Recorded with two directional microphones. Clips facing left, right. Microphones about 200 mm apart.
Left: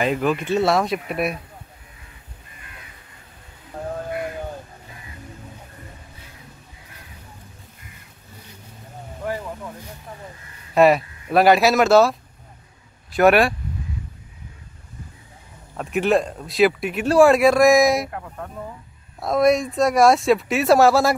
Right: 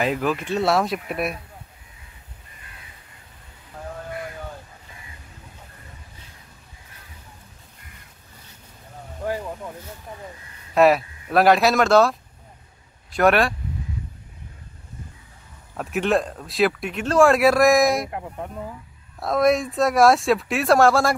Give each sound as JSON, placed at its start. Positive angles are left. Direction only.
{"t": 0.0, "sound": "speech", "side_deg": 0}
{"t": 10.7, "sound": "speech", "side_deg": 0}
{"t": 15.7, "sound": "speech", "side_deg": 0}
{"t": 18.1, "sound": "speech", "side_deg": -20}
{"t": 19.1, "sound": "speech", "side_deg": 0}